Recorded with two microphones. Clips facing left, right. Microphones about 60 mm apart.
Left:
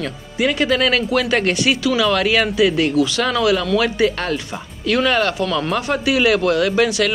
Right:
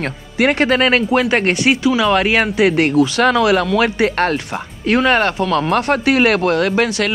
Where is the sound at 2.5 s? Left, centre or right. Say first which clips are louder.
Right 3 dB; right.